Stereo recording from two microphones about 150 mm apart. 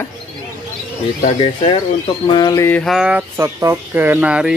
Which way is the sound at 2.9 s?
5° right (ahead or behind).